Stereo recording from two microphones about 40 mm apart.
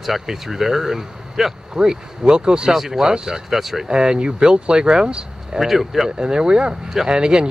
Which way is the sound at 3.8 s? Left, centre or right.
Centre.